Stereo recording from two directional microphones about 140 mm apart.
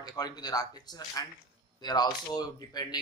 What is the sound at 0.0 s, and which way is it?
A man's voice, 30° left (ahead or behind).